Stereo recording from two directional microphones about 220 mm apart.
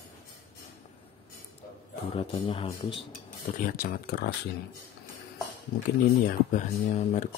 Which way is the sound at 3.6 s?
40° left (ahead or behind).